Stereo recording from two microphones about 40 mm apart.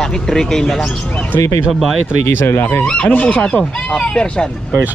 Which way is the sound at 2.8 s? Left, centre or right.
Left.